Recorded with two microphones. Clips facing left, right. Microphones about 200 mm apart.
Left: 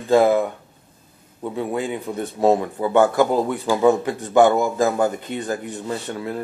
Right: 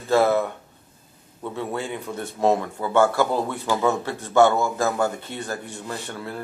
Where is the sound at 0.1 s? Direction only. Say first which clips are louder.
Left 3 dB; 15° left (ahead or behind).